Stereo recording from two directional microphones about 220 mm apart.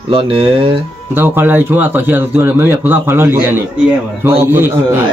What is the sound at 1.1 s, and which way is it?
A man's voice, 10° right (ahead or behind).